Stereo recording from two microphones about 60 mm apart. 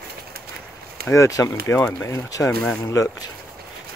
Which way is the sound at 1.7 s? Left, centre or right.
Left.